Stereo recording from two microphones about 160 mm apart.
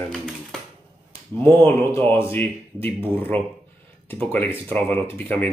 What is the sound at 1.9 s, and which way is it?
Speech, 15° left (ahead or behind).